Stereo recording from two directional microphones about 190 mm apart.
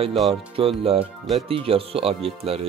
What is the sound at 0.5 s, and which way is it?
Speech, 30° right (ahead or behind).